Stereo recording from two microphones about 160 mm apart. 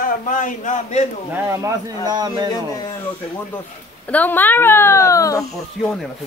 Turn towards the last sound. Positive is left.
turn(degrees=0)  # may be behind; listen again after turning